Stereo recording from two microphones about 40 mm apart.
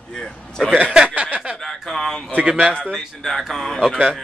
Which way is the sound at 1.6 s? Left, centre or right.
Centre.